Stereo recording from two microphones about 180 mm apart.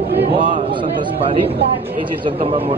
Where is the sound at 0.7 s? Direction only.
30° right (ahead or behind).